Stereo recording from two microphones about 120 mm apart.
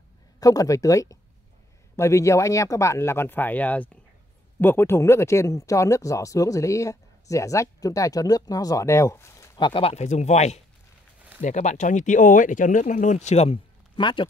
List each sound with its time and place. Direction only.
0.4 s speech: 30° left (ahead or behind)
9.6 s speech: 45° left (ahead or behind)
10.0 s speech: 75° left (ahead or behind)
11.4 s speech: 90° left; by 13.6 s 60° left (ahead or behind)
13.9 s speech: 40° left (ahead or behind)